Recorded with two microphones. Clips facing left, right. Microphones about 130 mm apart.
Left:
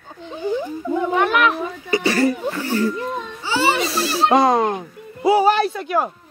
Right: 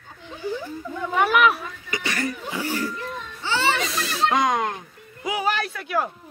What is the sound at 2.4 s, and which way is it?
Whimper, 10° right (ahead or behind).